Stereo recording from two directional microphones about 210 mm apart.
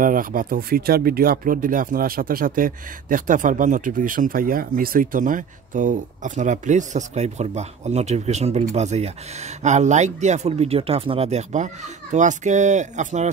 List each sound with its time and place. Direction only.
0.0 s speech: 40° right (ahead or behind)